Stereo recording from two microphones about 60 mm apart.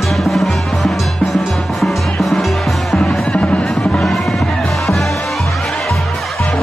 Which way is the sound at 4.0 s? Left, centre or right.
Centre.